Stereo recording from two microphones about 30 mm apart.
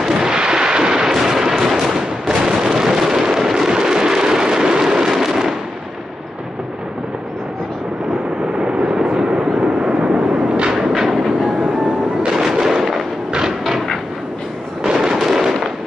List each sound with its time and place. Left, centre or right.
0.1 s artillery fire: right
1.8 s a sound: centre
5.1 s fireworks: centre
8.5 s vehicle: right
10.9 s train: centre
12.3 s fireworks: centre
14.9 s fireworks: centre
15.1 s fireworks: centre